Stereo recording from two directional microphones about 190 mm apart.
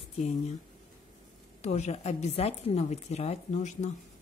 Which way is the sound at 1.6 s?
35° left (ahead or behind).